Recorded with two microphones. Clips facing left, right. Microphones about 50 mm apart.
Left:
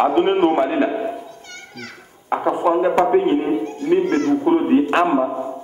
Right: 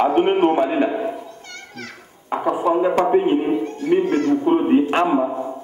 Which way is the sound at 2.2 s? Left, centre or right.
Left.